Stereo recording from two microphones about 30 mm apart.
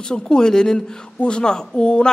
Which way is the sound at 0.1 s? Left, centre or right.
Left.